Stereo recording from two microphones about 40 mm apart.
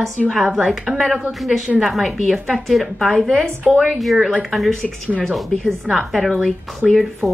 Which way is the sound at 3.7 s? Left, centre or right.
Centre.